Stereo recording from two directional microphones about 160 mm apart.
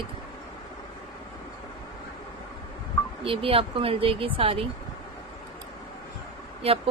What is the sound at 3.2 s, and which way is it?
Speech, 35° right (ahead or behind).